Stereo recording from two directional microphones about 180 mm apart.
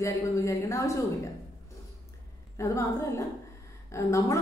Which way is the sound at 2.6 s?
15° left (ahead or behind).